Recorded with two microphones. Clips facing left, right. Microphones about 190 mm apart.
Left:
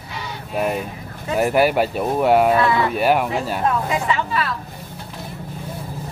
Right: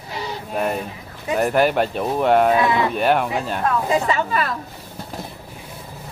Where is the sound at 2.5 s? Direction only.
20° right (ahead or behind).